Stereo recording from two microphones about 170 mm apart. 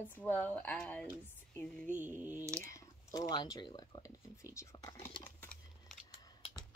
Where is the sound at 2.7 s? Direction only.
20° left (ahead or behind).